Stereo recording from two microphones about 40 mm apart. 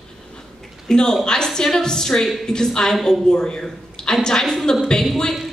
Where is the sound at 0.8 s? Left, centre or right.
Centre.